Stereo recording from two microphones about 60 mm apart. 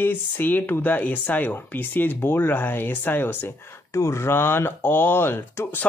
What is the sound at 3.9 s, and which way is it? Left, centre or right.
Speech, left.